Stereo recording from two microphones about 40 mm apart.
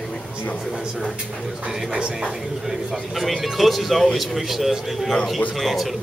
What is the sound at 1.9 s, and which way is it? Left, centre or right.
Speech, centre.